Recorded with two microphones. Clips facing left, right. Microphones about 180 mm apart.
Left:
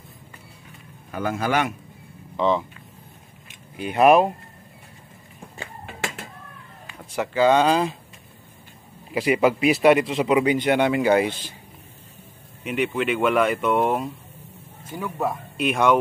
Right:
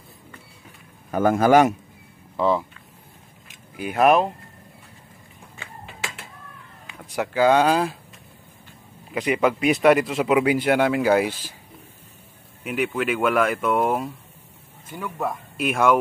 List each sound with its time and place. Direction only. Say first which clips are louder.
1.1 s a man's voice: right 8 dB; 45° right (ahead or behind)
2.3 s speech: even; 5° right (ahead or behind)
3.7 s speech: left 2 dB; 5° right (ahead or behind)
6.9 s speech: even; 10° right (ahead or behind)
9.1 s speech: left 2 dB; 5° left (ahead or behind)
12.6 s speech: left 1 dB; 5° right (ahead or behind)
15.0 s speech: left 2 dB; 10° left (ahead or behind)
15.5 s speech: even; 5° right (ahead or behind)